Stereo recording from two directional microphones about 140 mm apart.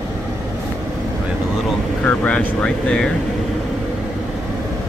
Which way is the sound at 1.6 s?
10° left (ahead or behind).